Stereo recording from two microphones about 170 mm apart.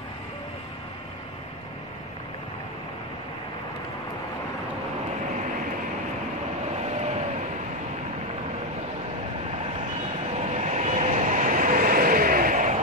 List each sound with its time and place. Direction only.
6.8 s vehicle: 40° right (ahead or behind)
10.5 s vehicle: 40° right (ahead or behind)